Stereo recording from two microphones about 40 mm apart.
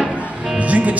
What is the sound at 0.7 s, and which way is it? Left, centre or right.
Music, right.